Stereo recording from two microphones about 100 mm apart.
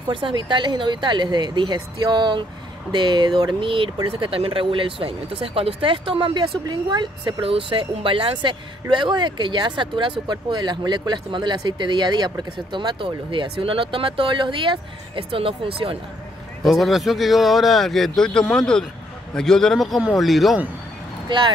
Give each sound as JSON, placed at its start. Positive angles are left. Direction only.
{"t": 0.1, "sound": "speech", "side_deg": -55}
{"t": 7.4, "sound": "speech", "side_deg": -65}
{"t": 16.6, "sound": "speech", "side_deg": 0}
{"t": 21.3, "sound": "speech", "side_deg": -55}